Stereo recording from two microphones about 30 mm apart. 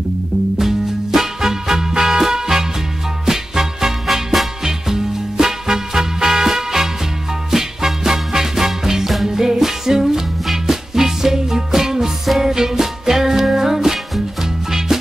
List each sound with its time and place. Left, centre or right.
0.6 s music: centre